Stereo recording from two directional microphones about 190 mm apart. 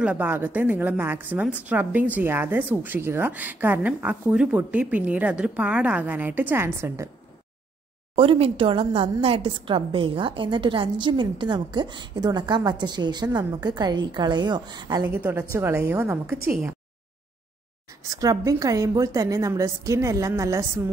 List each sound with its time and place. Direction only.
0.0 s a woman's voice: 10° right (ahead or behind)
8.2 s a woman's voice: 30° right (ahead or behind); by 16.3 s 10° right (ahead or behind)
18.1 s a woman's voice: 20° right (ahead or behind)